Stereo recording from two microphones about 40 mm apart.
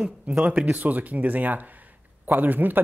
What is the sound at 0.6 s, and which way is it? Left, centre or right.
Speech, right.